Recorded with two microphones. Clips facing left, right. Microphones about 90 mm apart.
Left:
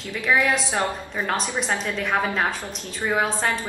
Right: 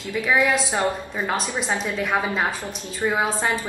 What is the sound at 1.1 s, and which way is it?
Speech, 5° right (ahead or behind).